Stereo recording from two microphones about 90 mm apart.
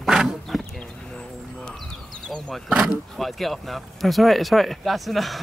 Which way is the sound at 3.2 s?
Centre (ahead or behind).